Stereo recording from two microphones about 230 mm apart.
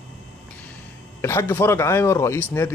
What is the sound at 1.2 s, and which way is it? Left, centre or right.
A man's voice, centre.